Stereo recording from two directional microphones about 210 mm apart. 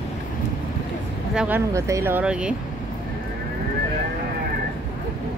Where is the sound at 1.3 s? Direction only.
10° right (ahead or behind).